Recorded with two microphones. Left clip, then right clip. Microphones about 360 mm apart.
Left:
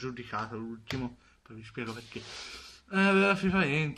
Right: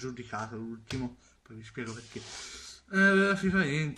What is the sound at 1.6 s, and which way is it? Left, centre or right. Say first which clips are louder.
Speech: left 1 dB; centre.